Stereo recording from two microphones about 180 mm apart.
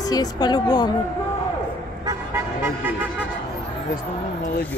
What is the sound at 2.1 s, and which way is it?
Vehicle, 15° right (ahead or behind).